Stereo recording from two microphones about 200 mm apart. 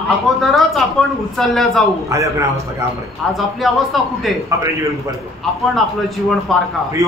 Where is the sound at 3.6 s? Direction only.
Centre (ahead or behind).